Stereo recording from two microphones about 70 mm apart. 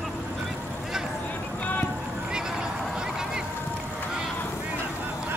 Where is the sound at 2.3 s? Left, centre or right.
Centre.